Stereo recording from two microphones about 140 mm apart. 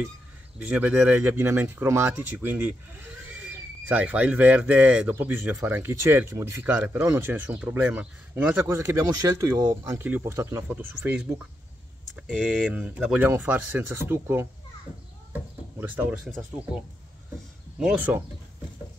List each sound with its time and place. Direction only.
0.6 s speech: 10° right (ahead or behind)
15.8 s speech: 15° right (ahead or behind)